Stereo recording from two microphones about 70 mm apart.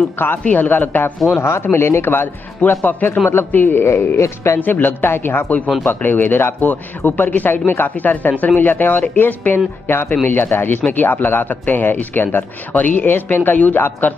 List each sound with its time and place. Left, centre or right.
0.4 s a man's voice: left
4.6 s a man's voice: left